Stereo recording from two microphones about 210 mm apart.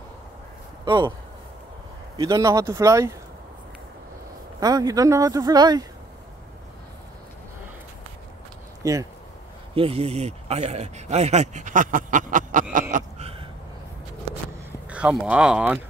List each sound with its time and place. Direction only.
0.8 s speech: 20° right (ahead or behind)
2.1 s speech: 15° right (ahead or behind)
4.6 s speech: 15° right (ahead or behind)
8.8 s speech: 15° right (ahead or behind)
9.8 s speech: 25° right (ahead or behind)
12.9 s a sound: 30° right (ahead or behind)
14.9 s speech: 5° right (ahead or behind)